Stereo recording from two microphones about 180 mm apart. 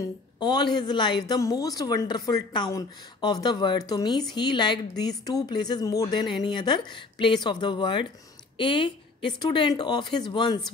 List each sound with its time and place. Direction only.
0.4 s a woman's voice: 25° left (ahead or behind)